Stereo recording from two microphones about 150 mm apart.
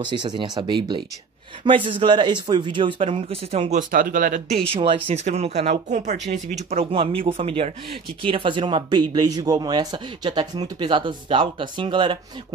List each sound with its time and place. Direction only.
0.0 s speech: 30° right (ahead or behind)
3.9 s speech: 65° right (ahead or behind)
4.5 s speech: 40° right (ahead or behind)